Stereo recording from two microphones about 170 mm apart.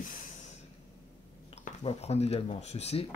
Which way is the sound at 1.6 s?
40° left (ahead or behind).